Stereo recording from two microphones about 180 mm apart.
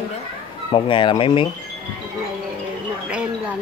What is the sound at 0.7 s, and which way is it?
Speech, 25° left (ahead or behind).